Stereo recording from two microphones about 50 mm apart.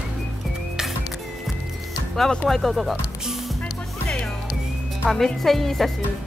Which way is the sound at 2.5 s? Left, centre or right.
Centre.